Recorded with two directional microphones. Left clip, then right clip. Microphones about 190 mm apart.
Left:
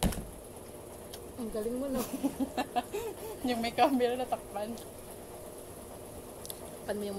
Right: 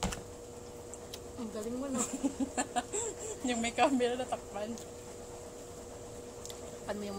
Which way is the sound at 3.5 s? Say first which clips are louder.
Left 2 dB; 5° right (ahead or behind).